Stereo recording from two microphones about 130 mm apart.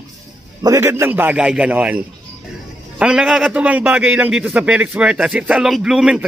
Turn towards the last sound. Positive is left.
turn(degrees=-5)  # may be behind; listen again after turning